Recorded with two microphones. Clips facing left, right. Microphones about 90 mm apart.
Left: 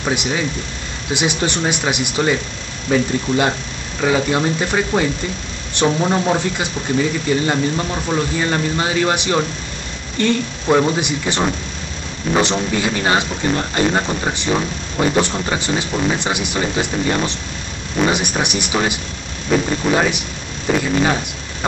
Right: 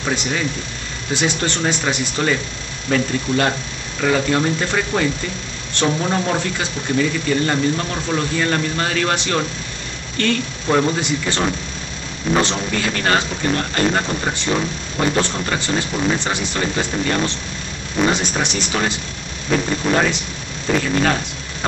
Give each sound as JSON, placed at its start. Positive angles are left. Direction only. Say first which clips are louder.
{"t": 0.0, "sound": "a man's voice", "louder": "left 2 dB", "side_deg": 15}
{"t": 1.4, "sound": "a man's voice", "louder": "left 1 dB", "side_deg": 15}